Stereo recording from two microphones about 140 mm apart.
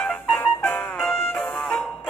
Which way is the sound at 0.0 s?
10° left (ahead or behind).